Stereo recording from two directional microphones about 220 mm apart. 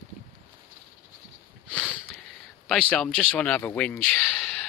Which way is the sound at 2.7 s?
5° left (ahead or behind).